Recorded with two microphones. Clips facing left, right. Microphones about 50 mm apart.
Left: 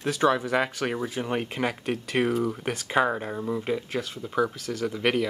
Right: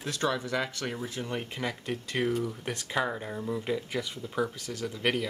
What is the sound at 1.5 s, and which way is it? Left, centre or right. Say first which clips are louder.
Speech: left 6 dB; left.